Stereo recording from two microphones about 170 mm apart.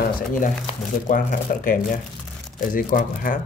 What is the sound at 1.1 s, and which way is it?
Speech, 55° left (ahead or behind).